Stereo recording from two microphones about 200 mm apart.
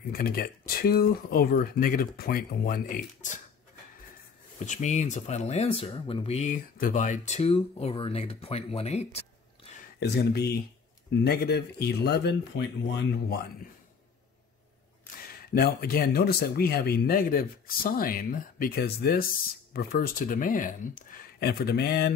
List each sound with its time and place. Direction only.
0.1 s speech: 45° left (ahead or behind)
4.6 s speech: 35° left (ahead or behind)
9.9 s speech: 55° left (ahead or behind)
15.2 s speech: 50° left (ahead or behind)